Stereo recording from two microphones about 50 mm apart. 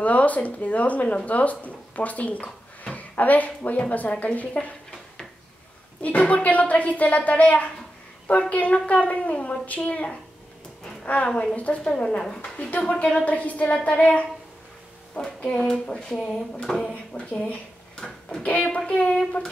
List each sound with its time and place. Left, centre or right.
0.0 s a woman's voice: left
6.0 s a woman's voice: left
12.9 s speech: centre
13.2 s a woman's voice: left
15.1 s speech: centre
17.9 s a sound: centre
18.8 s speech: left